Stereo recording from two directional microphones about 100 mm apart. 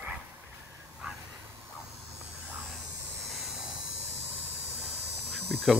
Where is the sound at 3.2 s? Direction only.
5° right (ahead or behind).